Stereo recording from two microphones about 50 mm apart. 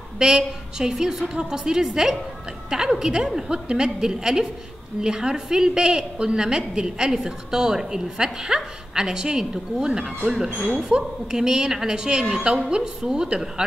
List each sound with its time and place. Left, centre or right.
0.2 s a woman's voice: centre